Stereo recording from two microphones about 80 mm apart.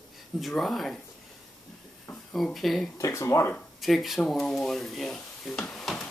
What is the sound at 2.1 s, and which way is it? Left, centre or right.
Speech, centre.